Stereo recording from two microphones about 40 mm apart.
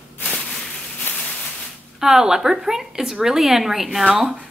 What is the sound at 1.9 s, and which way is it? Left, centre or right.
A woman's voice, centre.